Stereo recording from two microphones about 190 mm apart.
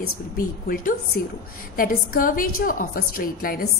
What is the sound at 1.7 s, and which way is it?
A woman's voice, 50° left (ahead or behind).